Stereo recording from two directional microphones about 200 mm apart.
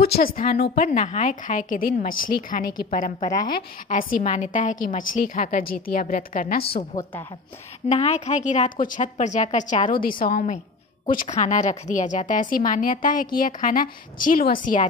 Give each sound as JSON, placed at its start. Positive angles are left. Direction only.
{"t": 0.0, "sound": "a woman's voice", "side_deg": 50}
{"t": 6.7, "sound": "a woman's voice", "side_deg": 20}
{"t": 7.9, "sound": "a woman's voice", "side_deg": 35}